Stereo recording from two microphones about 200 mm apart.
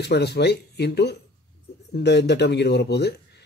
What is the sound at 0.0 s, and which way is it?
Speech, 55° left (ahead or behind).